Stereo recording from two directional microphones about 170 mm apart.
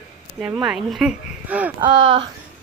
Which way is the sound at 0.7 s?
Centre (ahead or behind).